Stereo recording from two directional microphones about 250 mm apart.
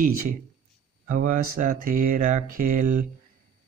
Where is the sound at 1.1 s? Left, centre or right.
Right.